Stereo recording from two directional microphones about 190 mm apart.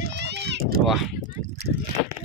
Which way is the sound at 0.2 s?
60° right (ahead or behind).